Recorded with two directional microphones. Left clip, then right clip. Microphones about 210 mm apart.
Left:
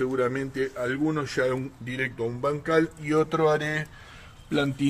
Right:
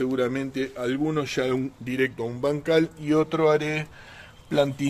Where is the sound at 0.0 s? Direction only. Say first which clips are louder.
Even; 45° right (ahead or behind).